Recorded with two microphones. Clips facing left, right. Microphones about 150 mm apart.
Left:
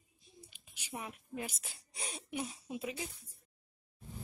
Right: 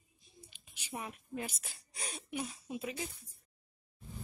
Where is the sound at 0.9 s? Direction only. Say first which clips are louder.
Right 1 dB; 5° left (ahead or behind).